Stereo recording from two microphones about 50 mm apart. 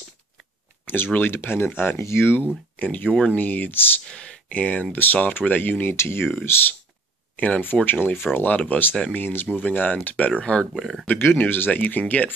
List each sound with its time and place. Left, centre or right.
0.8 s speech: left
2.8 s speech: left
4.0 s speech: centre
4.5 s speech: left
7.3 s speech: left
11.1 s speech: left
11.7 s speech: left